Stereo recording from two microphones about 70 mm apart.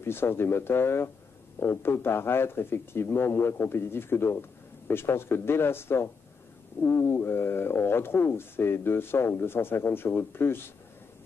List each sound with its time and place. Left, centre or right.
0.0 s speech: left